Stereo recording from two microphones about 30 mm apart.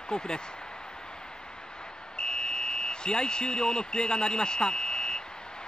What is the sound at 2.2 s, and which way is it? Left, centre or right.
Speech, left.